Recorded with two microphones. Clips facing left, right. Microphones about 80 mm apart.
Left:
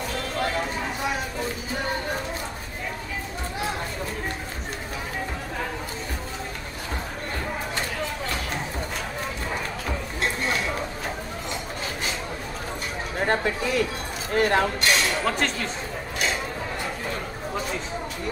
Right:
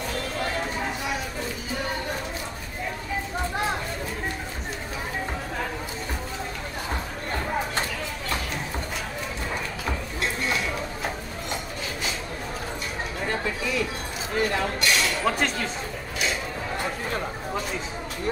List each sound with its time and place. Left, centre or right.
13.2 s a sound: left
14.3 s speech: left
15.2 s speech: centre